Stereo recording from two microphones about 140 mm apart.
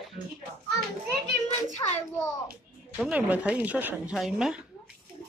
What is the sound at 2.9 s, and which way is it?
Speech, 10° right (ahead or behind).